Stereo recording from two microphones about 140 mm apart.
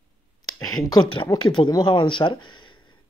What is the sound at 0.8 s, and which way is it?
Speech, 30° left (ahead or behind).